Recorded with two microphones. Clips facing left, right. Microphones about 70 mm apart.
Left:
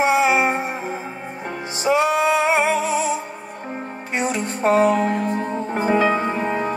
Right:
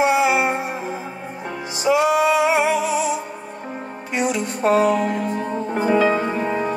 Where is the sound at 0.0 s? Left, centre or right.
Left.